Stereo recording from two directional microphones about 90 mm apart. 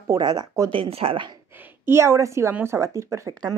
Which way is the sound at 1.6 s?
30° right (ahead or behind).